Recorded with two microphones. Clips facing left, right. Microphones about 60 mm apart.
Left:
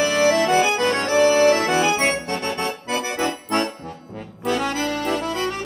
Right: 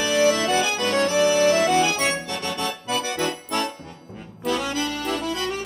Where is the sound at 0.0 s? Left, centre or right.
Left.